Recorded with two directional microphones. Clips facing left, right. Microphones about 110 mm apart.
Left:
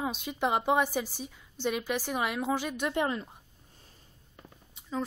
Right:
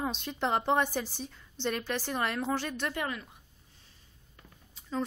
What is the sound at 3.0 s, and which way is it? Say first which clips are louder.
Speech: left 5 dB; 30° left (ahead or behind).